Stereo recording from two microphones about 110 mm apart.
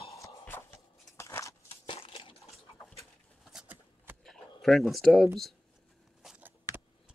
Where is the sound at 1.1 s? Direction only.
25° left (ahead or behind).